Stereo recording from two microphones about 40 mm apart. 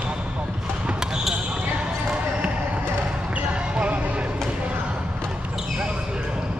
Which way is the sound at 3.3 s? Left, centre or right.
Right.